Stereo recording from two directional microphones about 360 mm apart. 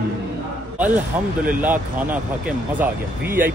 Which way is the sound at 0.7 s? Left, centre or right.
Centre.